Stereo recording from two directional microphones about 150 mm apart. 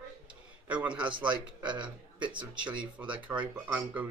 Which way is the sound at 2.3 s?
5° right (ahead or behind).